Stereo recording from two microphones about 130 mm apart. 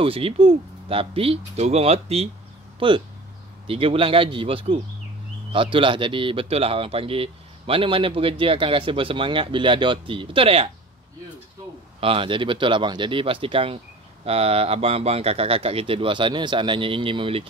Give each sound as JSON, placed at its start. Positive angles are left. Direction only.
{"t": 0.0, "sound": "speech", "side_deg": -45}
{"t": 2.8, "sound": "speech", "side_deg": -40}
{"t": 12.0, "sound": "speech", "side_deg": -45}